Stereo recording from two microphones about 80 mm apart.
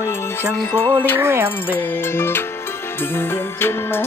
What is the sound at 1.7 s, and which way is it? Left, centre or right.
Music, left.